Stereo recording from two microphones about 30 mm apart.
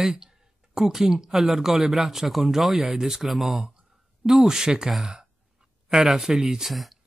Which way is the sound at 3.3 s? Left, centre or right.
Centre.